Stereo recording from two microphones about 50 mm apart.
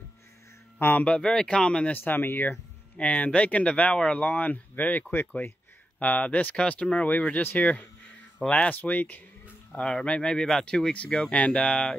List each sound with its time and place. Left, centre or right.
0.7 s speech: left
1.0 s speech: centre
1.9 s speech: left
3.0 s speech: left
9.7 s speech: left
10.4 s speech: centre